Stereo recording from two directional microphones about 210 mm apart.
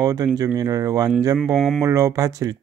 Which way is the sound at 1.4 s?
Centre (ahead or behind).